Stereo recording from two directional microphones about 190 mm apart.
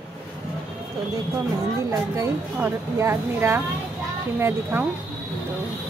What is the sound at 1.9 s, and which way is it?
Speech, 15° right (ahead or behind).